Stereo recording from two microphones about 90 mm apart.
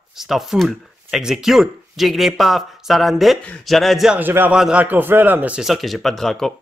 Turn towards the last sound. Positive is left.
turn(degrees=5)  # may be behind; listen again after turning